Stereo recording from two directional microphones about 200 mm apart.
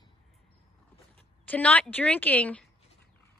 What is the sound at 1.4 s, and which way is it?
Speech, 10° left (ahead or behind).